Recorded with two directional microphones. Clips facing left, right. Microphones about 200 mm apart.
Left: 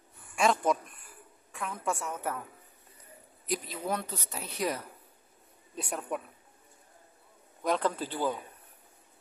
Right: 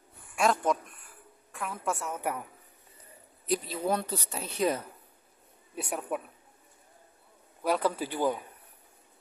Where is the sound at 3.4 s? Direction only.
30° right (ahead or behind).